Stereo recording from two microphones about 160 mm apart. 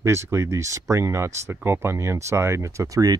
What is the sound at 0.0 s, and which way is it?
Speech, 15° right (ahead or behind).